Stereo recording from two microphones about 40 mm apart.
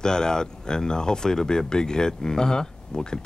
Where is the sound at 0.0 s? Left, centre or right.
Centre.